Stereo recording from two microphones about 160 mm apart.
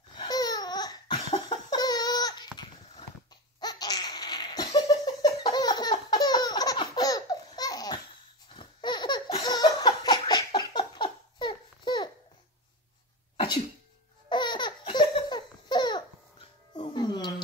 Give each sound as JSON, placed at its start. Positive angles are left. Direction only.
{"t": 0.2, "sound": "babbling", "side_deg": 25}
{"t": 1.5, "sound": "a sound", "side_deg": 25}
{"t": 3.5, "sound": "laughter", "side_deg": 25}
{"t": 14.3, "sound": "laughter", "side_deg": 30}